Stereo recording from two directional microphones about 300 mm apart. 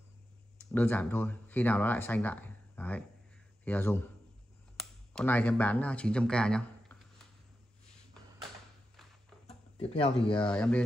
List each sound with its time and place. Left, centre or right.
0.7 s a man's voice: centre
9.8 s speech: centre
10.4 s speech: centre